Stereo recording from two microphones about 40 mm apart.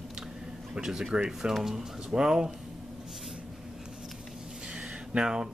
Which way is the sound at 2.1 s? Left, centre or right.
Centre.